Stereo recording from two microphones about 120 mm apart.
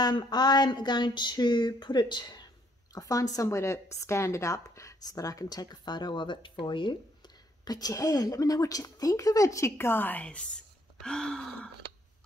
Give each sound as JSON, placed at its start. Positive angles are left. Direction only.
{"t": 0.0, "sound": "a woman's voice", "side_deg": 35}